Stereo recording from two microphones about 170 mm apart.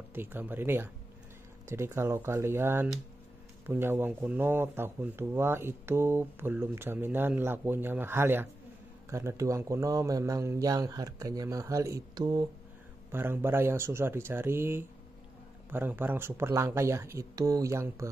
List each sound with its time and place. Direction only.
0.1 s speech: 10° right (ahead or behind)
13.1 s speech: 15° right (ahead or behind)